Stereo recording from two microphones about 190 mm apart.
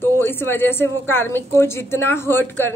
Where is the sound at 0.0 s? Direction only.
10° left (ahead or behind).